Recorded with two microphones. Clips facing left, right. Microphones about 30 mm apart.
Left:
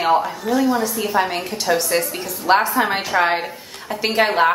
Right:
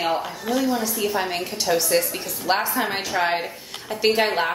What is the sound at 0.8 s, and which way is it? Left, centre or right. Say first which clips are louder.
A woman's voice: left 4 dB; centre.